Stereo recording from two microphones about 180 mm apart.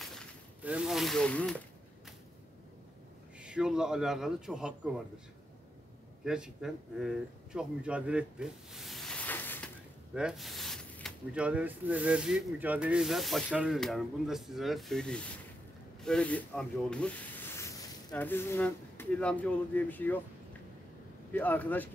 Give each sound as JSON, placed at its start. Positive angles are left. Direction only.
{"t": 0.6, "sound": "rub", "side_deg": -5}
{"t": 3.3, "sound": "rub", "side_deg": -5}
{"t": 6.2, "sound": "speech", "side_deg": -5}
{"t": 10.1, "sound": "snake", "side_deg": -5}
{"t": 11.3, "sound": "rub", "side_deg": -5}
{"t": 16.0, "sound": "speech", "side_deg": 5}
{"t": 21.3, "sound": "speech", "side_deg": 10}